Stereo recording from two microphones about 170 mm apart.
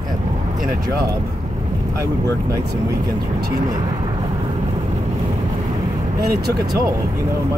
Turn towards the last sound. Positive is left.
turn(degrees=-65)  # may be behind; listen again after turning